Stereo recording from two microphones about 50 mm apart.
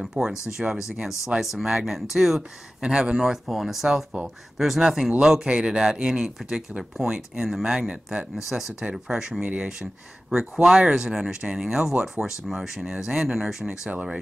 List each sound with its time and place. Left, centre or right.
0.0 s speech: centre
3.4 s speech: centre
8.5 s speech: centre
9.4 s speech: right
10.5 s speech: centre
13.7 s speech: right